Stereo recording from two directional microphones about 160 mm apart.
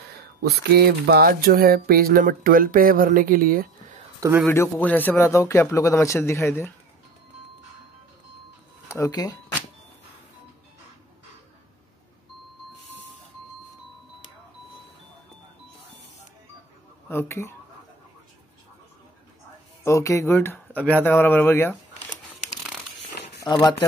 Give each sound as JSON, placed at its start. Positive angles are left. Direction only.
{"t": 0.4, "sound": "speech", "side_deg": -75}
{"t": 4.5, "sound": "speech", "side_deg": 10}
{"t": 8.8, "sound": "speech", "side_deg": 15}
{"t": 17.1, "sound": "speech", "side_deg": 15}
{"t": 19.8, "sound": "speech", "side_deg": 20}
{"t": 23.4, "sound": "speech", "side_deg": 25}